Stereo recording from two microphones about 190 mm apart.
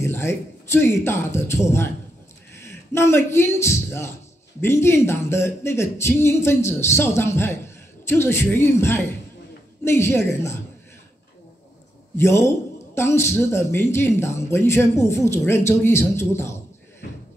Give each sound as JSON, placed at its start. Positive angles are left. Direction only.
{"t": 0.0, "sound": "a man's voice", "side_deg": 15}
{"t": 12.2, "sound": "a man's voice", "side_deg": 15}